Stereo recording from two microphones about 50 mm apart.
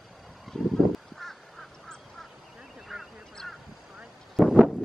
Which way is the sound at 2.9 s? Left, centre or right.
Centre.